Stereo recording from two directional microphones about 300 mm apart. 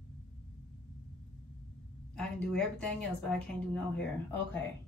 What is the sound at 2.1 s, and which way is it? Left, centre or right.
Speech, centre.